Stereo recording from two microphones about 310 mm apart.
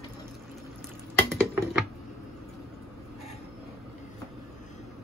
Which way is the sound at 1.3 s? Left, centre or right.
Centre.